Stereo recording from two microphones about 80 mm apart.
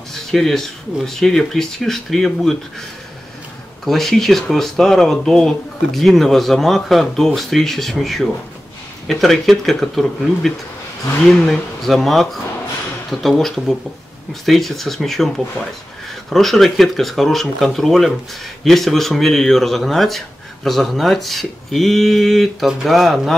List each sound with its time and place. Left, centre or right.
0.1 s speech: centre
3.8 s speech: centre